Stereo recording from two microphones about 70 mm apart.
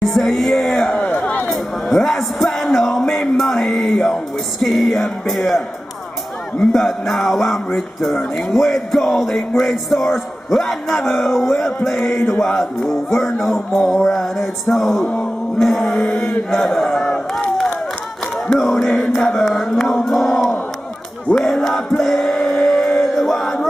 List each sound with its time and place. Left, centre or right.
0.0 s music: centre
0.9 s a sound: centre
1.5 s music: centre
6.7 s music: centre
18.5 s music: centre
21.4 s chant: centre
22.5 s music: centre